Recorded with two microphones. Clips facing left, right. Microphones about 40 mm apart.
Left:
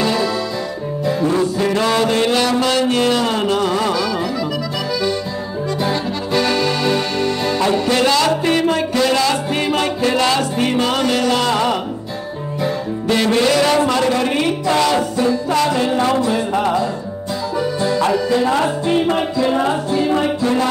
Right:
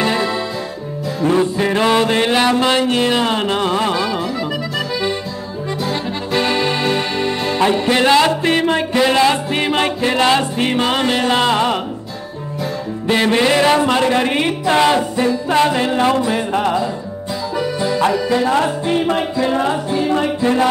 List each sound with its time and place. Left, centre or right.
0.0 s music: right
1.2 s a woman's voice: right
6.3 s music: right
13.1 s a woman's voice: right
18.3 s a woman's voice: right
19.9 s music: centre